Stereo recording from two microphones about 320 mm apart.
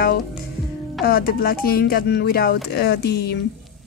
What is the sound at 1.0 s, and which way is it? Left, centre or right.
Speech, left.